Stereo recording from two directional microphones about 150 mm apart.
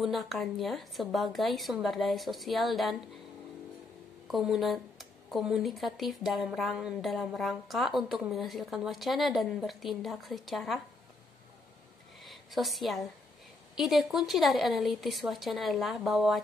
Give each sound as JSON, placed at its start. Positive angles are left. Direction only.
{"t": 0.0, "sound": "speech", "side_deg": 0}
{"t": 4.3, "sound": "speech", "side_deg": 0}
{"t": 12.2, "sound": "a sound", "side_deg": 0}
{"t": 13.7, "sound": "speech", "side_deg": 0}